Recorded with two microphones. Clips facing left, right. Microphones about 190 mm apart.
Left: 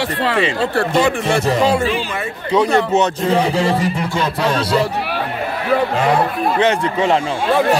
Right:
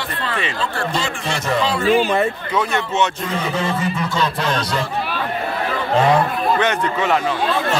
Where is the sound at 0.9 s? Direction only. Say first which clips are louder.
Left 8 dB; 55° left (ahead or behind).